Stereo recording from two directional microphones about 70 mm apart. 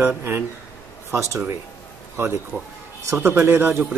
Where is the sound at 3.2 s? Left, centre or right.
Right.